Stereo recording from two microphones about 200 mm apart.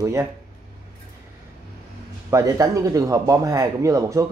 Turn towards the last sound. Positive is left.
turn(degrees=-15)  # may be behind; listen again after turning